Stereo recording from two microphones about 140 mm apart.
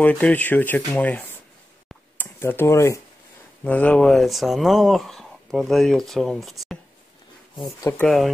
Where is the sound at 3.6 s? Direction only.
10° left (ahead or behind).